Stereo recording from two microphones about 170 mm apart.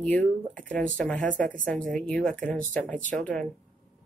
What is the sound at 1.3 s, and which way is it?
Speech, 50° right (ahead or behind).